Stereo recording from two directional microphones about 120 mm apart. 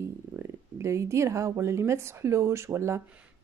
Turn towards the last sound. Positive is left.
turn(degrees=-25)  # may be behind; listen again after turning